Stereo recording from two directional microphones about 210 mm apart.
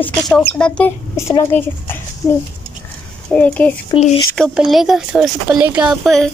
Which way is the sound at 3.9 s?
30° left (ahead or behind).